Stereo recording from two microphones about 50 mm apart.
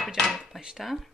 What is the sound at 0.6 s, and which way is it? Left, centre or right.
Speech, centre.